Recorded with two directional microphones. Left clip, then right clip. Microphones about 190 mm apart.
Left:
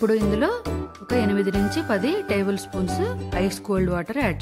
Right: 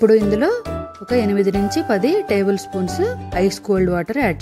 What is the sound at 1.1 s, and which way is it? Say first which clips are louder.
Speech: right 5 dB; 15° right (ahead or behind).